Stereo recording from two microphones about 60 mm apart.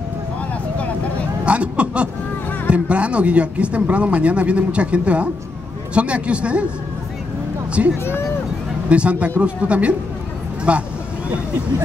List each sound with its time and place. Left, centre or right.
1.4 s speech: right
8.0 s speech: left
8.8 s speech: centre